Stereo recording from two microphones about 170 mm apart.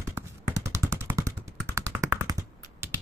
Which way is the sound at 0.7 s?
15° right (ahead or behind).